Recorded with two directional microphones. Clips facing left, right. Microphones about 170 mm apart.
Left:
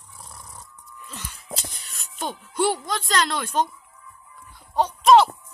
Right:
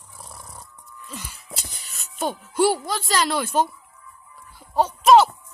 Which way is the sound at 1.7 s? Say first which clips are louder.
Right 1 dB; centre (ahead or behind).